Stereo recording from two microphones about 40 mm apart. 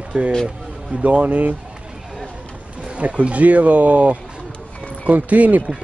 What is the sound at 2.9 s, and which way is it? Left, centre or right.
Speech, right.